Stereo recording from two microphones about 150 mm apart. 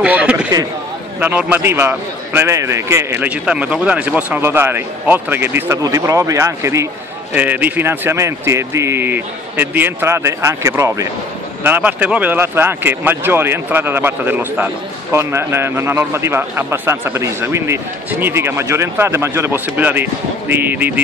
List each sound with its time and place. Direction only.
0.0 s speech: 10° right (ahead or behind)